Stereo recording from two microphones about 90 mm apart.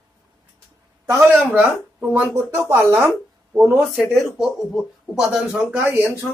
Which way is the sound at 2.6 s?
30° right (ahead or behind).